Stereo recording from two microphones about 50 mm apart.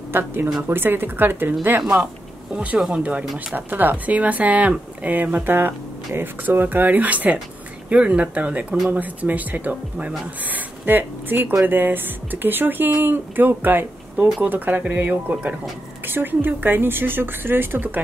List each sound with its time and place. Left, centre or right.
0.1 s speech: right
2.5 s speech: right
3.5 s speech: right
16.1 s speech: right